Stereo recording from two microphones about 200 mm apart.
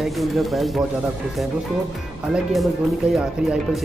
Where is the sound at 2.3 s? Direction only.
Centre (ahead or behind).